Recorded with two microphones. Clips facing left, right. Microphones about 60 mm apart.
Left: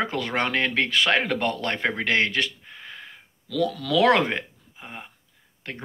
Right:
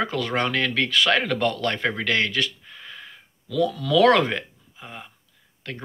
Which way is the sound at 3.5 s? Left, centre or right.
Left.